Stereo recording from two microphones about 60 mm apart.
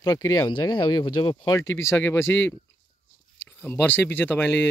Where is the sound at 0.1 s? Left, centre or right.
Left.